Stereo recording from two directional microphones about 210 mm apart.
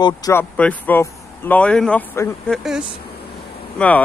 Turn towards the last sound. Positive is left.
turn(degrees=5)  # may be behind; listen again after turning